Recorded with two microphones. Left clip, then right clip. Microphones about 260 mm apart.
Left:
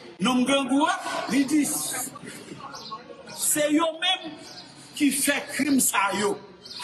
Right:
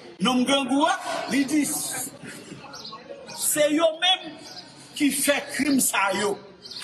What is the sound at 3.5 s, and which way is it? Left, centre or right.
A man's voice, centre.